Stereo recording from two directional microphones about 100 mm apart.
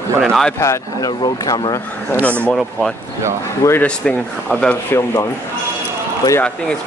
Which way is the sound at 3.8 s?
10° left (ahead or behind).